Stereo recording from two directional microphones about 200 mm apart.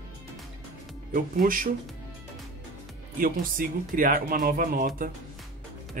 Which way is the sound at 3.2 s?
45° right (ahead or behind).